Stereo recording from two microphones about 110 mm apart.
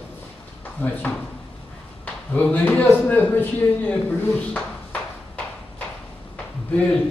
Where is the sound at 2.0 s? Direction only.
15° left (ahead or behind).